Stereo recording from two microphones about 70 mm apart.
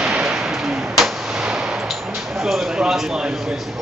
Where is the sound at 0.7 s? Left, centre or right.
Centre.